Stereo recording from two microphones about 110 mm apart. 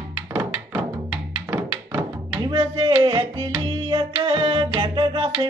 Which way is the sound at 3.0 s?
55° right (ahead or behind).